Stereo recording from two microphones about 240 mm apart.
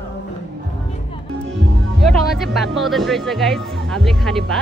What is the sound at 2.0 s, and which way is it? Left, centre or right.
Speech, centre.